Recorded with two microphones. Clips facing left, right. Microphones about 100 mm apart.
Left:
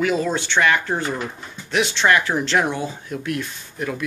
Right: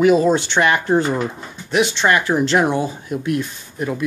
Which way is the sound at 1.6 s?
5° right (ahead or behind).